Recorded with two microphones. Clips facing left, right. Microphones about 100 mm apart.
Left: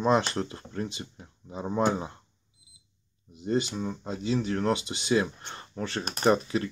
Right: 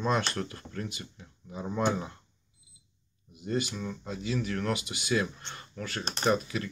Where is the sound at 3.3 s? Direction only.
25° left (ahead or behind).